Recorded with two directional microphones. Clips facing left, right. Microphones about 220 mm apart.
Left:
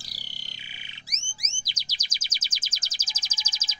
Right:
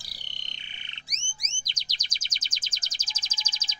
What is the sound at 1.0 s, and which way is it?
Music, 5° left (ahead or behind).